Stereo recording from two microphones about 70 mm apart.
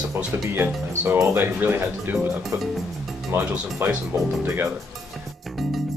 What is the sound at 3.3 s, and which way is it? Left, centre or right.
Speech, right.